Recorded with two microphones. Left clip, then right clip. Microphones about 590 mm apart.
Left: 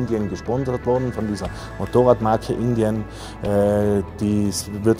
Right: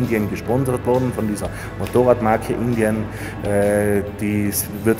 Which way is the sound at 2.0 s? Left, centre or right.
Left.